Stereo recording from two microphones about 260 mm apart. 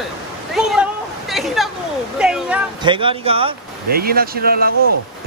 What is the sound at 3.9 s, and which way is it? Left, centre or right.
Speech, right.